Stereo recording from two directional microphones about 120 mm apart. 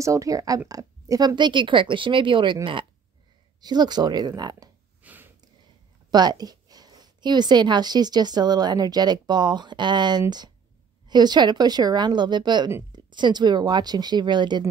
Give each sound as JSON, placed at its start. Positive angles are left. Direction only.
{"t": 0.0, "sound": "speech", "side_deg": -25}
{"t": 1.3, "sound": "a woman's voice", "side_deg": -40}
{"t": 5.0, "sound": "a sound", "side_deg": -15}
{"t": 6.0, "sound": "a woman's voice", "side_deg": -35}